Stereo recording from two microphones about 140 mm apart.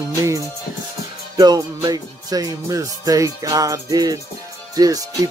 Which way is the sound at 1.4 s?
30° right (ahead or behind).